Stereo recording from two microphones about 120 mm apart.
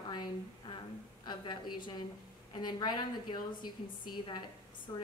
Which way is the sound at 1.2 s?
40° left (ahead or behind).